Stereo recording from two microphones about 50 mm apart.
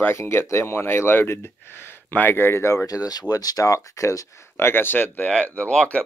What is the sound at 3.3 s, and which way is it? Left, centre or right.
Speech, right.